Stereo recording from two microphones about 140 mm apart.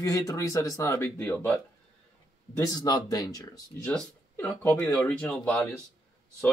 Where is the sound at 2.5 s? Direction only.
25° left (ahead or behind).